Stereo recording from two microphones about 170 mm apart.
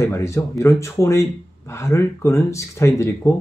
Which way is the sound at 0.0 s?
15° left (ahead or behind).